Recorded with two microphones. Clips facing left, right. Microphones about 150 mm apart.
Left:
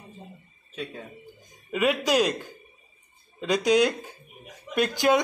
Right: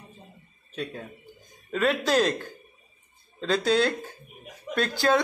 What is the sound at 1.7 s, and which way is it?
Speech, 15° left (ahead or behind).